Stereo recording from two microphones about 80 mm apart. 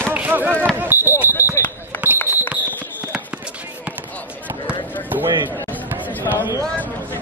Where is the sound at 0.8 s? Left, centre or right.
Right.